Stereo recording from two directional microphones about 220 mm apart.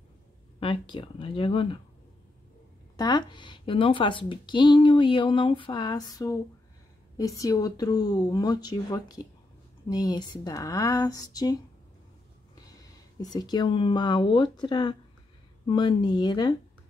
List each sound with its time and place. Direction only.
0.6 s speech: 20° left (ahead or behind)
3.0 s speech: 20° left (ahead or behind)
13.2 s speech: 15° left (ahead or behind)